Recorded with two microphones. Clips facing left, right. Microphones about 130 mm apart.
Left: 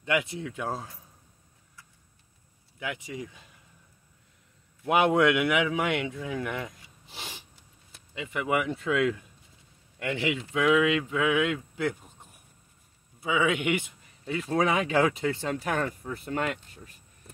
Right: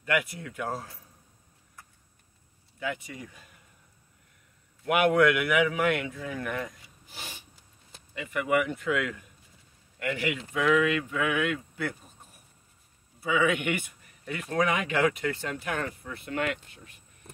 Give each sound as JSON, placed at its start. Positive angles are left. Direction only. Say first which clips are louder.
{"t": 0.0, "sound": "a man's voice", "louder": "left 1 dB", "side_deg": 20}
{"t": 2.8, "sound": "a man's voice", "louder": "even", "side_deg": 20}
{"t": 4.8, "sound": "a man's voice", "louder": "even", "side_deg": 25}
{"t": 13.2, "sound": "a man's voice", "louder": "even", "side_deg": 20}